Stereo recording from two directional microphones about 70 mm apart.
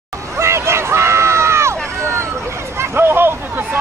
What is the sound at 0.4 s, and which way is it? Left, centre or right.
Run, right.